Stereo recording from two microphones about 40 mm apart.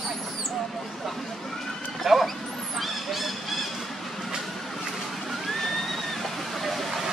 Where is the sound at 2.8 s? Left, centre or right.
Centre.